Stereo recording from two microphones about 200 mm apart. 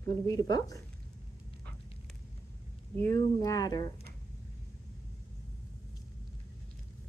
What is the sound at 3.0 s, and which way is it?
Speech, 15° left (ahead or behind).